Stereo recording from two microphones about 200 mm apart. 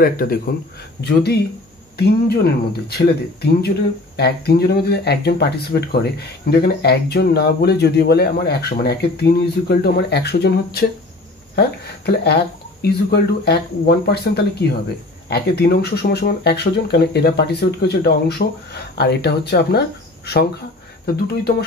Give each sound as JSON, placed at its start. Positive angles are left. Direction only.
{"t": 0.0, "sound": "speech", "side_deg": 50}
{"t": 12.8, "sound": "speech", "side_deg": 55}
{"t": 21.0, "sound": "speech", "side_deg": 50}